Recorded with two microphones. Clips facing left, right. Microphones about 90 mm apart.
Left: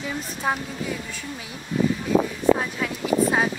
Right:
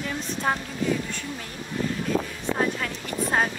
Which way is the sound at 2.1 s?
75° left (ahead or behind).